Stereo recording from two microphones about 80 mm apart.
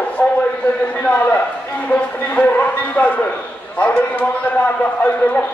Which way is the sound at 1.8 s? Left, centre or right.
Centre.